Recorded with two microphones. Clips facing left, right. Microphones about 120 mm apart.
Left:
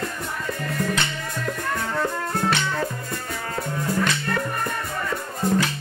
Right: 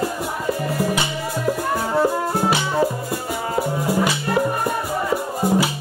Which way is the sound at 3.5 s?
20° right (ahead or behind).